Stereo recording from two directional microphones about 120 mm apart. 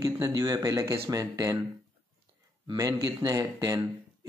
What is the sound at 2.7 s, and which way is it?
Speech, 30° right (ahead or behind).